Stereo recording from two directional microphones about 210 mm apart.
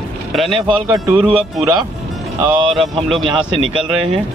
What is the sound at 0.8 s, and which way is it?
Speech, 15° right (ahead or behind).